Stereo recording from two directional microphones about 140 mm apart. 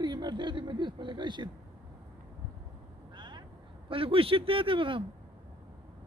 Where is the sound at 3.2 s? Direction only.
35° right (ahead or behind).